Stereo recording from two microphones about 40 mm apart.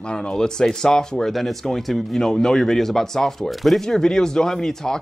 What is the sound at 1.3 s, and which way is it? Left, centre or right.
Speech, centre.